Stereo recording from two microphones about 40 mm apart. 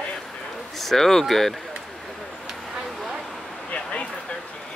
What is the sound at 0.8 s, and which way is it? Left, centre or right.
Speech, centre.